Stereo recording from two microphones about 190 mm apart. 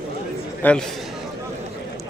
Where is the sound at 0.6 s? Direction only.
10° left (ahead or behind).